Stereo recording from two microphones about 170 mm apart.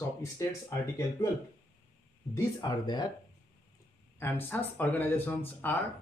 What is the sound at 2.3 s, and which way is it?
Speech, 25° left (ahead or behind).